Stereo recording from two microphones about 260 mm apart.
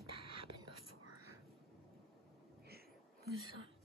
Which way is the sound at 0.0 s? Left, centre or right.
Right.